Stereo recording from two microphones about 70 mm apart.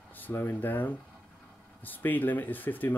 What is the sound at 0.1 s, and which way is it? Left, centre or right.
Speech, left.